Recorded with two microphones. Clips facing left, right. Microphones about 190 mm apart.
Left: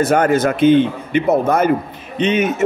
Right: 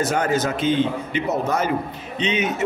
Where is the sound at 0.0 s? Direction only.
55° left (ahead or behind).